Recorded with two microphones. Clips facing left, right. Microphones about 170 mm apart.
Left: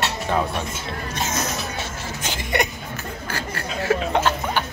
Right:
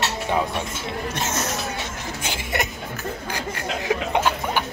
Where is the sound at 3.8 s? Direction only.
15° right (ahead or behind).